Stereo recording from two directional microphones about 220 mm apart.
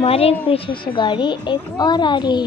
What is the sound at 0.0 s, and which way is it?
A child's voice, 25° left (ahead or behind).